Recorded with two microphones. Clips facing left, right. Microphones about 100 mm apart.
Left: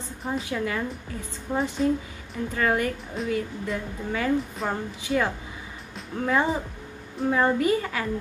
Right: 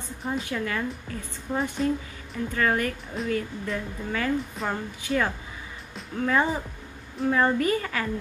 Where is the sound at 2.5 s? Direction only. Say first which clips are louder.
Left 1 dB; 15° left (ahead or behind).